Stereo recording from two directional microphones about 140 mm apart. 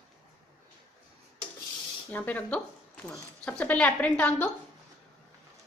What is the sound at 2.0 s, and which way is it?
A woman's voice, 10° left (ahead or behind).